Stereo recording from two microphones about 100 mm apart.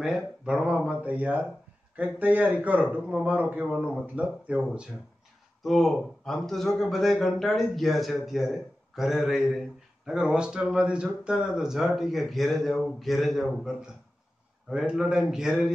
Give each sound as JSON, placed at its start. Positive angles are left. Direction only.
{"t": 0.0, "sound": "a man's voice", "side_deg": -5}